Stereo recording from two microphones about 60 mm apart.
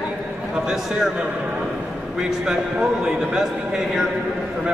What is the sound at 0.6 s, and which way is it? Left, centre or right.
Speech, centre.